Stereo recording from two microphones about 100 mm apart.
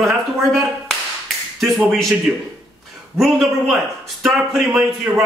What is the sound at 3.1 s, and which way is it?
A man's voice, centre (ahead or behind).